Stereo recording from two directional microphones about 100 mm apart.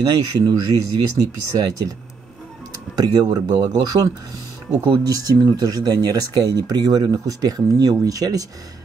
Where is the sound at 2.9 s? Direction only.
40° right (ahead or behind).